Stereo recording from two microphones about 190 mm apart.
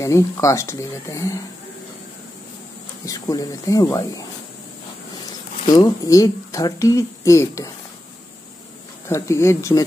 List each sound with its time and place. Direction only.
0.0 s speech: 15° left (ahead or behind)
3.1 s speech: 20° left (ahead or behind)
5.7 s speech: 20° left (ahead or behind)
9.1 s speech: 15° left (ahead or behind)